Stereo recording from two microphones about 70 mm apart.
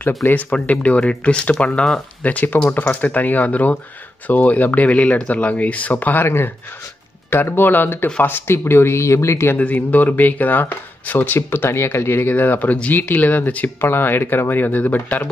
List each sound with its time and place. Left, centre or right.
0.2 s speech: left
9.6 s speech: left